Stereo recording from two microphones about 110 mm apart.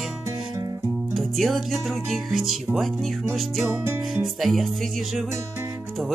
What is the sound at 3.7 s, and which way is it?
Music, 25° right (ahead or behind).